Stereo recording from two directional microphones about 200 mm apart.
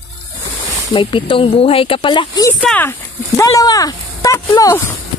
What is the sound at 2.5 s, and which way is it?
Speech, 5° left (ahead or behind).